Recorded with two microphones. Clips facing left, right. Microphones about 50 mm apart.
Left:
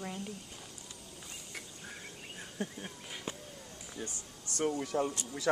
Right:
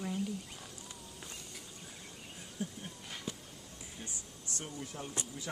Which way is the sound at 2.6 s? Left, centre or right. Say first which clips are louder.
Left 2 dB; left.